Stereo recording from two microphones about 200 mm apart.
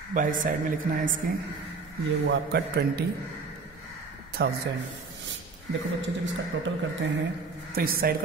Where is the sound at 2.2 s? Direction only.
60° right (ahead or behind).